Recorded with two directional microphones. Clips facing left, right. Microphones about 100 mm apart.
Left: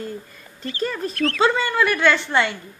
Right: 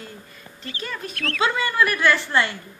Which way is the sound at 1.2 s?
25° left (ahead or behind).